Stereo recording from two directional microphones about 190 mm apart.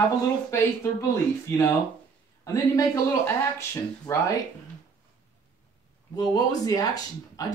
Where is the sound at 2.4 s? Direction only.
15° left (ahead or behind).